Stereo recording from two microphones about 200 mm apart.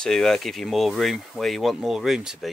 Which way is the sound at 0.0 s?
Centre (ahead or behind).